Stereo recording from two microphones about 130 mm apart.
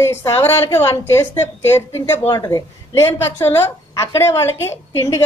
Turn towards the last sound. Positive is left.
turn(degrees=20)  # may be behind; listen again after turning